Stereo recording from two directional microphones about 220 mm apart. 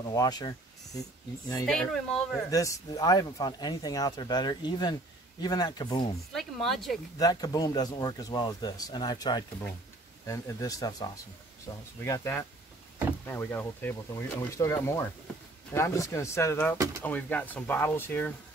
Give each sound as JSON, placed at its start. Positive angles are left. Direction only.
{"t": 0.1, "sound": "speech", "side_deg": 15}
{"t": 1.7, "sound": "speech", "side_deg": 5}
{"t": 2.5, "sound": "speech", "side_deg": 15}
{"t": 6.3, "sound": "speech", "side_deg": 0}
{"t": 7.2, "sound": "speech", "side_deg": 15}
{"t": 16.7, "sound": "speech", "side_deg": -15}
{"t": 17.0, "sound": "speech", "side_deg": 10}